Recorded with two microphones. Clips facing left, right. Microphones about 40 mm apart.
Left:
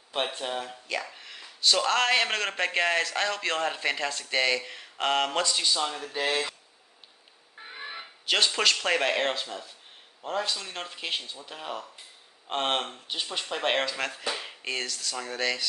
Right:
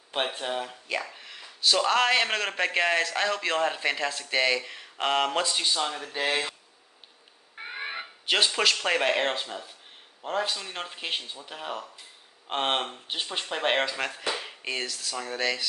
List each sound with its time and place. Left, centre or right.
0.1 s speech: centre
5.4 s speech: centre
7.5 s fire alarm: right
8.0 s speech: centre